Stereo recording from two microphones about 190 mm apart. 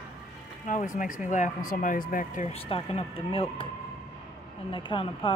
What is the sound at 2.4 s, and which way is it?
Speech, 30° left (ahead or behind).